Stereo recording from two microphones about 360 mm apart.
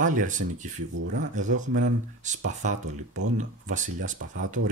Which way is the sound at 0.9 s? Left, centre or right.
Right.